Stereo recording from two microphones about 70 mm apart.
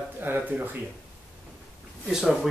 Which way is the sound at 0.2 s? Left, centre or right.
Right.